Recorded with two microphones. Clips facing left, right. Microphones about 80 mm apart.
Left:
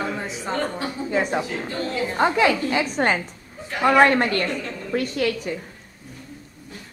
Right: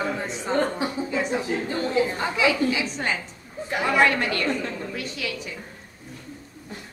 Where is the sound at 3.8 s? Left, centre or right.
Left.